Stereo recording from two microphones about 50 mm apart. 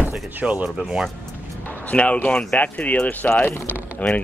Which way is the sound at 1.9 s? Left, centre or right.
Left.